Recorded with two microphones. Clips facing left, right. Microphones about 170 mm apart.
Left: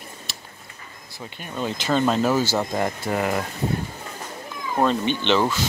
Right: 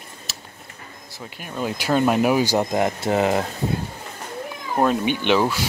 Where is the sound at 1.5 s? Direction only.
10° right (ahead or behind); by 3.5 s 25° right (ahead or behind).